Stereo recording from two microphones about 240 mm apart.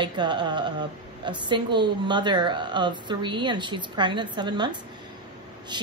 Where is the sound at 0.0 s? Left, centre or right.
Centre.